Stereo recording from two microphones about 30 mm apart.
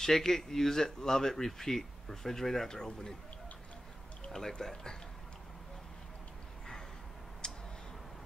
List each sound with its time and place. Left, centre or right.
0.0 s speech: centre
2.7 s speech: left
4.3 s speech: centre
7.4 s a sound: left